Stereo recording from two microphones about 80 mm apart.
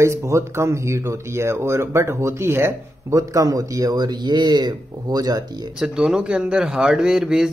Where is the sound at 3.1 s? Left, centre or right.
Right.